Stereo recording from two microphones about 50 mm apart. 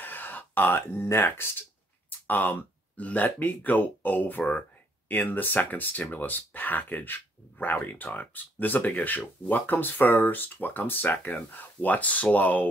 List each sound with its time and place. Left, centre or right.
0.0 s a sound: left
1.4 s speech: left
2.0 s speech: left